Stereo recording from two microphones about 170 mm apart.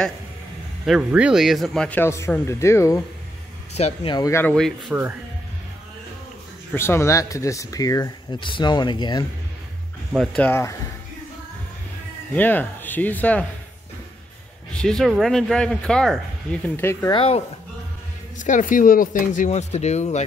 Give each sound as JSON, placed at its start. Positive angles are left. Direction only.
{"t": 0.8, "sound": "speech", "side_deg": -5}
{"t": 3.7, "sound": "speech", "side_deg": 35}
{"t": 4.6, "sound": "speech", "side_deg": 5}
{"t": 6.7, "sound": "speech", "side_deg": 15}
{"t": 10.1, "sound": "speech", "side_deg": 0}
{"t": 10.5, "sound": "speech", "side_deg": 15}
{"t": 12.4, "sound": "speech", "side_deg": 10}
{"t": 14.7, "sound": "speech", "side_deg": 5}
{"t": 17.1, "sound": "speech", "side_deg": 35}
{"t": 18.4, "sound": "speech", "side_deg": 50}